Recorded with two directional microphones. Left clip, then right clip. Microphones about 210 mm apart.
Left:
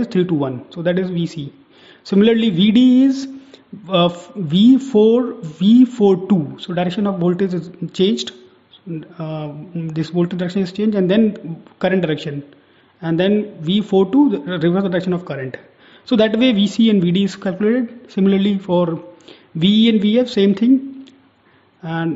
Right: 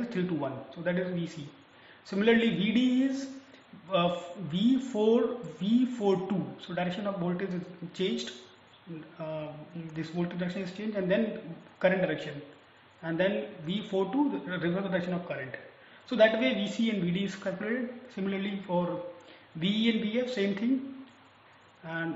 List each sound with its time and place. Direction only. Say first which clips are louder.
0.1 s speech: left 15 dB; 45° left (ahead or behind)
9.9 s speech: left 14 dB; 50° left (ahead or behind)
21.8 s speech: left 12 dB; 50° left (ahead or behind)